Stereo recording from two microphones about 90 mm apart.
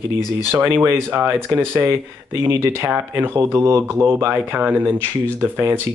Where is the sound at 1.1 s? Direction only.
25° right (ahead or behind).